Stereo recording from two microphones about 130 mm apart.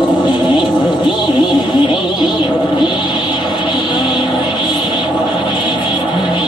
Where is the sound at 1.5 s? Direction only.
35° left (ahead or behind).